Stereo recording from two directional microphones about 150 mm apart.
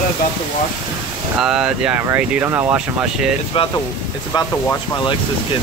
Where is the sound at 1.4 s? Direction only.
5° right (ahead or behind).